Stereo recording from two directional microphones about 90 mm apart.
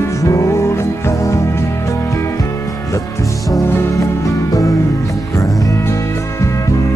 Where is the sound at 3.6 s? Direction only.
30° left (ahead or behind).